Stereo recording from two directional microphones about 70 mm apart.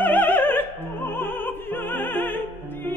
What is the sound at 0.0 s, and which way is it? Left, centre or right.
Music, left.